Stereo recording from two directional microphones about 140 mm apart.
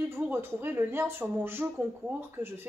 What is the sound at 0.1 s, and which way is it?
Speech, 15° right (ahead or behind).